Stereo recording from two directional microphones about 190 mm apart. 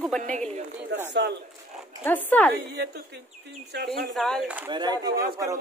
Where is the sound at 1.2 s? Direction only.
60° right (ahead or behind).